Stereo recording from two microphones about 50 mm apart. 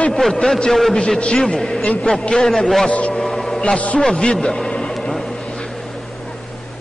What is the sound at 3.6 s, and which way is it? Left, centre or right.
A man's voice, left.